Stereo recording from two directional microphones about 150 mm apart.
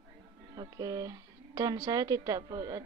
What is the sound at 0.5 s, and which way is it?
A woman's voice, 25° right (ahead or behind).